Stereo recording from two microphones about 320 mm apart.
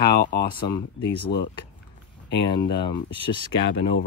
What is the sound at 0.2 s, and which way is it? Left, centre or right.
Speech, left.